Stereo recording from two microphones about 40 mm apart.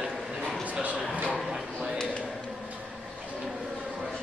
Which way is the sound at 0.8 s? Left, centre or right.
Right.